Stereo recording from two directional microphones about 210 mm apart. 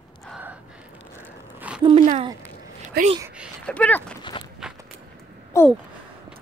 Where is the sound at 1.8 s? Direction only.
30° right (ahead or behind).